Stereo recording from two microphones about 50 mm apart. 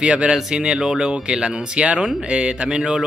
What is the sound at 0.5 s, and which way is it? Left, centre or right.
Speech, centre.